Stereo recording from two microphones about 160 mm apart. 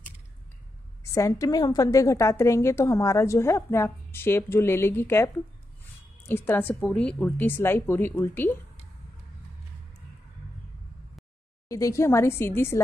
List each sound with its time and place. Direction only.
1.1 s a woman's voice: 20° left (ahead or behind)
11.7 s a woman's voice: 20° left (ahead or behind)